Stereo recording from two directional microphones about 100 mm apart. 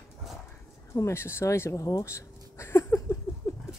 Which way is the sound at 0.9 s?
30° left (ahead or behind).